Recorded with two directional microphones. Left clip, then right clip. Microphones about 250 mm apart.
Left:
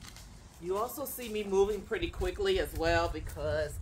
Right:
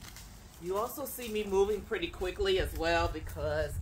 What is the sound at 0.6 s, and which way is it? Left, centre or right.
Speech, centre.